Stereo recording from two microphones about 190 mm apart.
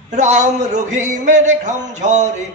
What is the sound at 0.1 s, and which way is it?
A man's voice, 40° right (ahead or behind).